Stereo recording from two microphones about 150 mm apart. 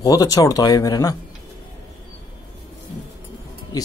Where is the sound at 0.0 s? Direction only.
25° left (ahead or behind).